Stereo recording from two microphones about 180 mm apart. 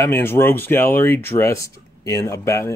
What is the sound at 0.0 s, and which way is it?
Speech, 15° left (ahead or behind).